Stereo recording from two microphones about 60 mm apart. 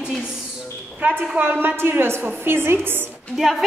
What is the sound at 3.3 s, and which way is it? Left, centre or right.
Speech, centre.